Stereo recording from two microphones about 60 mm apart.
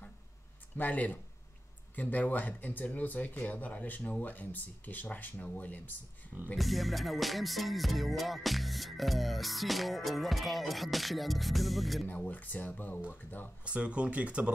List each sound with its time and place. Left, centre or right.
0.7 s speech: left
6.5 s music: centre
12.3 s speech: left
13.7 s speech: centre